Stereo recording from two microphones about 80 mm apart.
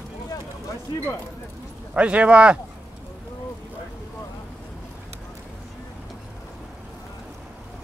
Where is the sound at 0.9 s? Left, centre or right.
Left.